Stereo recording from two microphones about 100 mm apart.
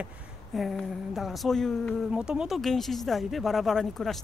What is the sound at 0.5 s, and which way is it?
Speech, centre (ahead or behind).